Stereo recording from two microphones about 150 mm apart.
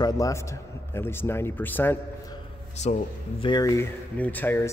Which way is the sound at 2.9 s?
50° left (ahead or behind).